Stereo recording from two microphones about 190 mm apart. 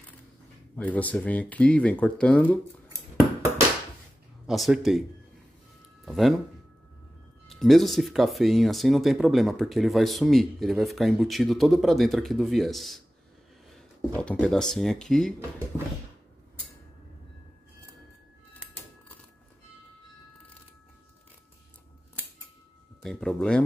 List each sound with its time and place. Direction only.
0.7 s speech: 10° left (ahead or behind)
4.5 s speech: centre (ahead or behind)
6.0 s speech: centre (ahead or behind)
7.4 s speech: centre (ahead or behind)
13.7 s a sound: 5° left (ahead or behind)
14.4 s speech: 5° left (ahead or behind)
23.0 s speech: 5° left (ahead or behind)